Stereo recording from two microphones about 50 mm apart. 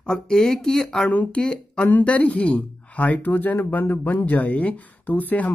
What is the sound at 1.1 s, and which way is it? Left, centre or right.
Speech, left.